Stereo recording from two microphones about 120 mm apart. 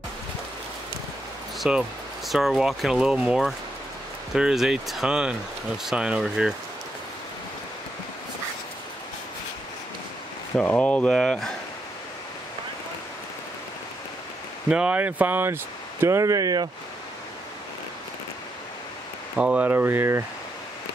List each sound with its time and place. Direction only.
1.6 s speech: 5° right (ahead or behind)
10.5 s speech: 10° left (ahead or behind)
14.7 s speech: 10° right (ahead or behind); by 16.6 s 30° right (ahead or behind)
19.3 s speech: 10° right (ahead or behind)